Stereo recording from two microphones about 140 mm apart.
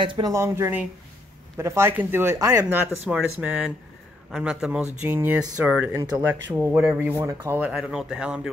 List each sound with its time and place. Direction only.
0.0 s speech: 35° right (ahead or behind)
0.3 s speech: 20° right (ahead or behind)
3.1 s speech: 10° right (ahead or behind)
7.7 s speech: 5° right (ahead or behind)